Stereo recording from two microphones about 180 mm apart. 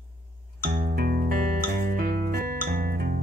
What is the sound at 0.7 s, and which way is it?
Music, 55° right (ahead or behind).